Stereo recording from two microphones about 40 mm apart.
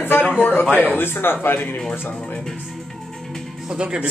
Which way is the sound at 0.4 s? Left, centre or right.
Left.